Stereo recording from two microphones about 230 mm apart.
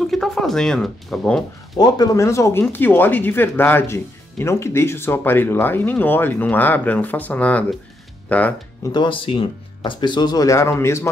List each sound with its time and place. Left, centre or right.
0.0 s speech: centre
1.8 s speech: centre
8.9 s speech: left